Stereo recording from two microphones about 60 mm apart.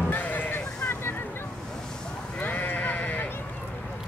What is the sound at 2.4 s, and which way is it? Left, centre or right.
Sheep, left.